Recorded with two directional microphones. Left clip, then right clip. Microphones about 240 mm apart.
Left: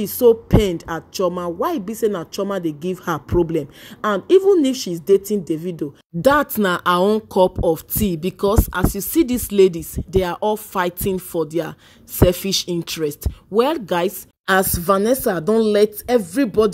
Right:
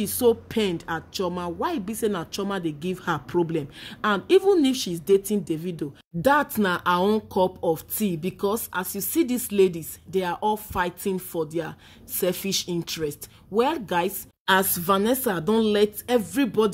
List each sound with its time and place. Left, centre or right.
0.0 s a woman's voice: centre
6.2 s speech: left